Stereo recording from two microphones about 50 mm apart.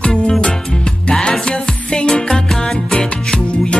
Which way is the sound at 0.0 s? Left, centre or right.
Centre.